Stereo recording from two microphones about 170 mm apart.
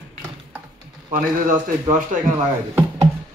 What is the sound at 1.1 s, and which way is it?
Speech, 45° right (ahead or behind).